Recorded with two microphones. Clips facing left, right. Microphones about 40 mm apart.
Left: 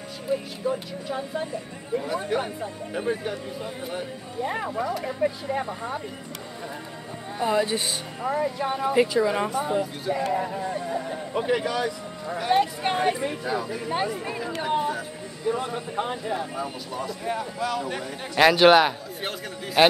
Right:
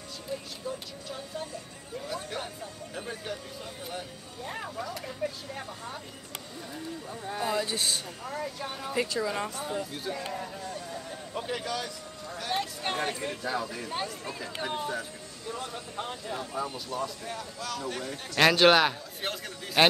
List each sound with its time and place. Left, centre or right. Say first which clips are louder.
0.3 s speech: left 10 dB; left
4.4 s speech: left 9 dB; left
7.4 s speech: left 7 dB; left
11.5 s speech: left 8 dB; centre
13.9 s speech: left 9 dB; left
16.5 s speech: left 2 dB; centre